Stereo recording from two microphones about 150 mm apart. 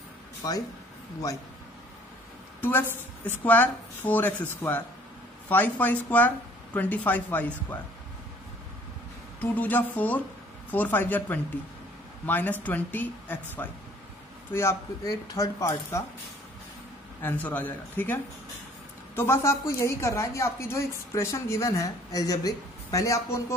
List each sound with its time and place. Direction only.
2.6 s a woman's voice: 15° left (ahead or behind)
9.4 s a woman's voice: 10° left (ahead or behind)
17.2 s a woman's voice: 15° left (ahead or behind)